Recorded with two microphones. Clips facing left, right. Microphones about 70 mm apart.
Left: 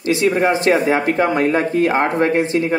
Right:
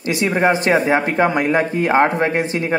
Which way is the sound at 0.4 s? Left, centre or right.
Right.